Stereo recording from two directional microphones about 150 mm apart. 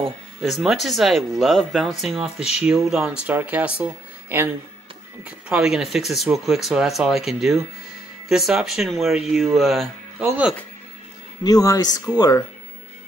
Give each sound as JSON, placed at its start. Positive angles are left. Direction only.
{"t": 0.4, "sound": "speech", "side_deg": 0}
{"t": 11.4, "sound": "speech", "side_deg": 25}